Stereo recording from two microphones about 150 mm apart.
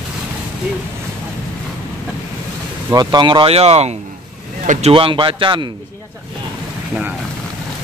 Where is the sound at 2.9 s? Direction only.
30° right (ahead or behind).